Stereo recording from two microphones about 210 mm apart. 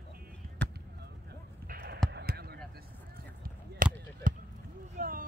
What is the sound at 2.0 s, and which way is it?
Basketball bounce, 50° right (ahead or behind).